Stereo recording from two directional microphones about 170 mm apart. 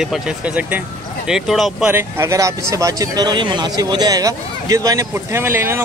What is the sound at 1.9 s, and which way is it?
Speech, 15° right (ahead or behind).